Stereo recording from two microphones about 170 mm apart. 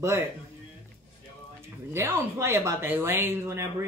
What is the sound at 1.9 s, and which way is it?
Speech, 15° right (ahead or behind).